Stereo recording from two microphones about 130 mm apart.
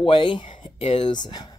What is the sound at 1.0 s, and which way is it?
Speech, 35° left (ahead or behind).